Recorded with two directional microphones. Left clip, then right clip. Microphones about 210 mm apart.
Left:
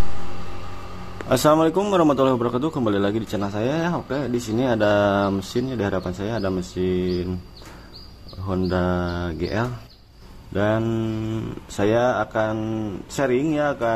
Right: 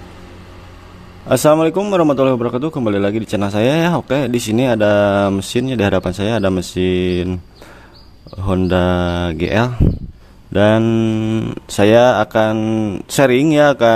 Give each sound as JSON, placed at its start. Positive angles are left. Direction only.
{"t": 1.3, "sound": "a man's voice", "side_deg": -25}
{"t": 8.5, "sound": "a man's voice", "side_deg": -40}